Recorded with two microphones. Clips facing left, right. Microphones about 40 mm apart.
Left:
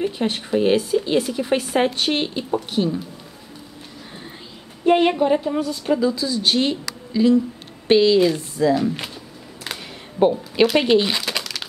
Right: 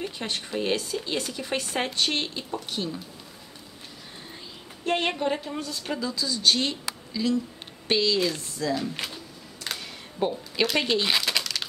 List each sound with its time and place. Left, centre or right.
0.0 s speech: centre
4.8 s speech: centre
9.7 s a sound: centre
10.1 s a woman's voice: left
10.5 s speech: centre
11.1 s crumpling: centre